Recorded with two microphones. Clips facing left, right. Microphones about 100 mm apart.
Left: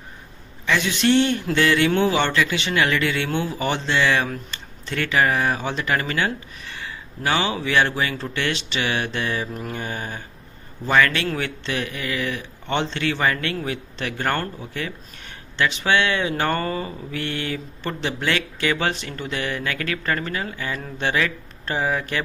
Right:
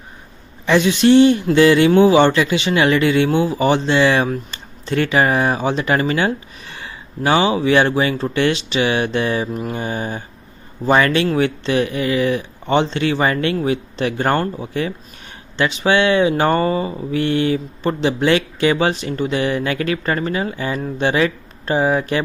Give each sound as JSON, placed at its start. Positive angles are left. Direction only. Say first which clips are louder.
{"t": 0.7, "sound": "speech", "louder": "right 7 dB", "side_deg": -20}